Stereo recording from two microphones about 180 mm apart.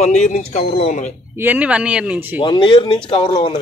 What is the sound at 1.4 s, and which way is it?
Speech, 10° right (ahead or behind).